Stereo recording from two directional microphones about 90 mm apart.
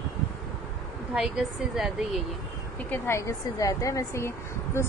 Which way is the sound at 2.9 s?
30° left (ahead or behind).